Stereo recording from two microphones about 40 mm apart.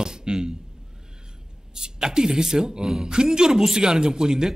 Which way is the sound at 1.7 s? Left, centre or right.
Centre.